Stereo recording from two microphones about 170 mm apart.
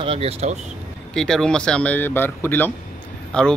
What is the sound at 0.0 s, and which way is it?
Speech, 35° right (ahead or behind).